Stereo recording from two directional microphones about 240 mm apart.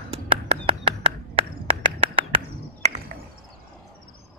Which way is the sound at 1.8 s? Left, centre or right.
Right.